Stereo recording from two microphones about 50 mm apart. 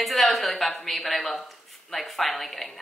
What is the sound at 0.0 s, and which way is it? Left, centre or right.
Speech, centre.